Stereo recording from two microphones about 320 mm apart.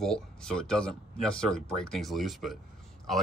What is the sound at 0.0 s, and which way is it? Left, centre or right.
Speech, centre.